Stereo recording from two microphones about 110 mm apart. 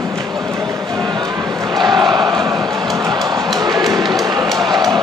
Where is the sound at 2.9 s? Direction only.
30° right (ahead or behind).